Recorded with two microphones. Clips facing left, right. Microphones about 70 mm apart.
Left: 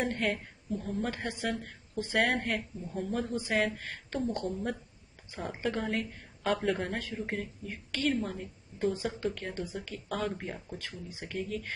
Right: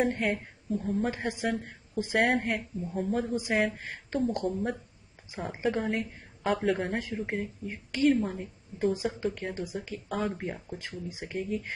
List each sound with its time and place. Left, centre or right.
0.0 s a woman's voice: centre
2.3 s a woman's voice: centre
4.5 s a woman's voice: centre
10.8 s a woman's voice: right